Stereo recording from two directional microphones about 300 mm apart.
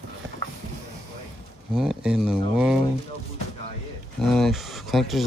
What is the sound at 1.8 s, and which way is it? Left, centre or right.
Speech, centre.